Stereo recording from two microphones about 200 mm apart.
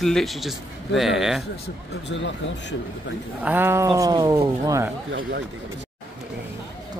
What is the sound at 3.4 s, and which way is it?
Speech, 10° right (ahead or behind).